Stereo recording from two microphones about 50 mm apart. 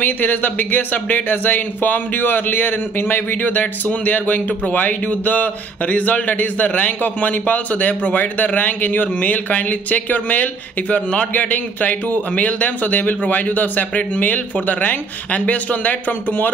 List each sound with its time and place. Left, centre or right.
0.0 s a man's voice: left